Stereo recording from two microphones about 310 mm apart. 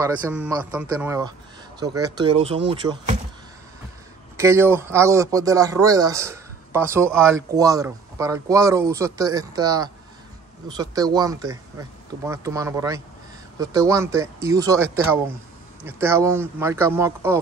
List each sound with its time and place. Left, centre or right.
0.0 s speech: centre
4.4 s speech: centre